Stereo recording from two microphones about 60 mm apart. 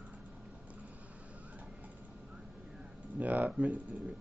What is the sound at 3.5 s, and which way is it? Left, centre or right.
Speech, right.